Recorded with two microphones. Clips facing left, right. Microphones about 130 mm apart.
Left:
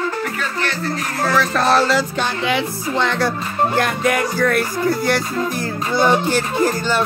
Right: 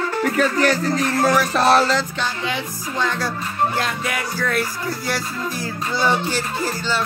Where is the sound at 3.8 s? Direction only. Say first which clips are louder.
Left 6 dB; 50° left (ahead or behind).